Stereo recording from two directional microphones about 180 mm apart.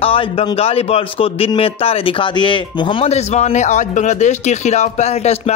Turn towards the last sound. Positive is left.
turn(degrees=35)  # may be behind; listen again after turning